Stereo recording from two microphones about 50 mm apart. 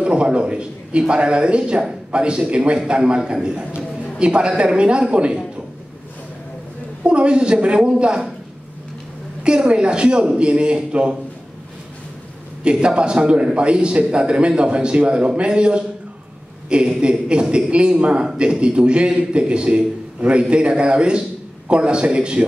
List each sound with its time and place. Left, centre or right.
0.0 s speech: centre
4.2 s speech: centre
7.0 s speech: centre
9.4 s speech: centre
12.6 s speech: centre